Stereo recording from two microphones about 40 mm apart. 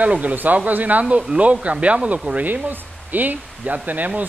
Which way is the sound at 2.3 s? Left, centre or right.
Right.